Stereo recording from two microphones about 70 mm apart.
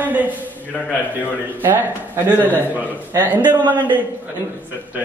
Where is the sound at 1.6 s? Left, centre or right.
Right.